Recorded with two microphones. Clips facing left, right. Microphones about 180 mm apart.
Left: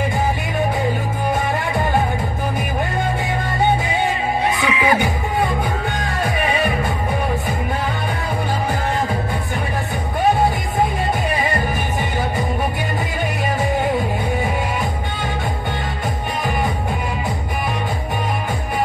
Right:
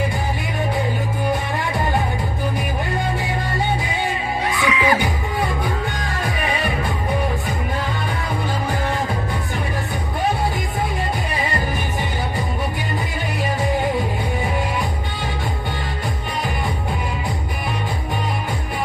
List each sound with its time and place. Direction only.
4.6 s music: 25° left (ahead or behind)